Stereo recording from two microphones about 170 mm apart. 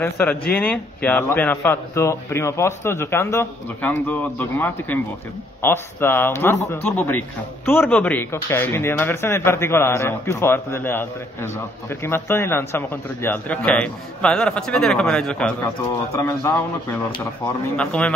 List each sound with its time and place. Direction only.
0.0 s a man's voice: 10° left (ahead or behind)
16.1 s a man's voice: 15° left (ahead or behind)
17.7 s a man's voice: 5° left (ahead or behind)